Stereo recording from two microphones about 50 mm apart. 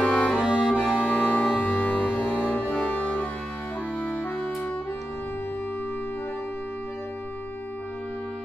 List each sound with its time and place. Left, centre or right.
0.0 s music: left
0.4 s accordion: centre
1.7 s music: left